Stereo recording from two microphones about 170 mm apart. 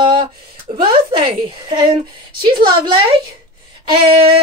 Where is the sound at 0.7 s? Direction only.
30° right (ahead or behind).